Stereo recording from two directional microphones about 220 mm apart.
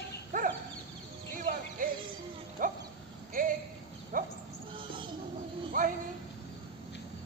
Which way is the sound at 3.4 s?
40° right (ahead or behind).